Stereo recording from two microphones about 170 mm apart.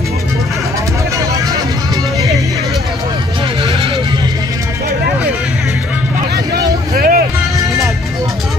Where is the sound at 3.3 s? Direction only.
30° right (ahead or behind).